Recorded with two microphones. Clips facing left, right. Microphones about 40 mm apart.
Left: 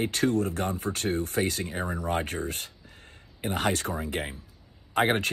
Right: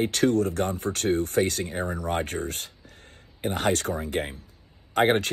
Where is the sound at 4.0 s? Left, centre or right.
Right.